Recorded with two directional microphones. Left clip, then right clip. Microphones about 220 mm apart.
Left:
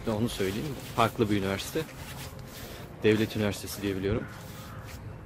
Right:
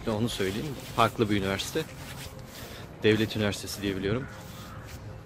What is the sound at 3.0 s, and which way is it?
Speech, 5° left (ahead or behind).